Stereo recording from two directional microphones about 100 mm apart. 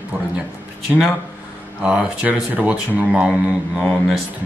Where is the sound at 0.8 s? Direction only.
5° right (ahead or behind).